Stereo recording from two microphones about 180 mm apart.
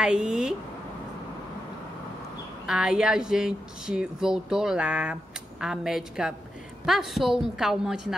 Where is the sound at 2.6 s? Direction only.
5° right (ahead or behind).